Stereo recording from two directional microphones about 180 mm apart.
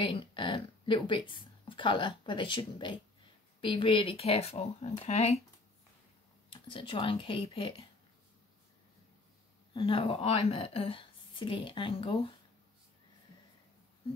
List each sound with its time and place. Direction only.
0.0 s speech: 25° left (ahead or behind)
6.5 s a woman's voice: 25° left (ahead or behind)
9.8 s a woman's voice: 30° left (ahead or behind)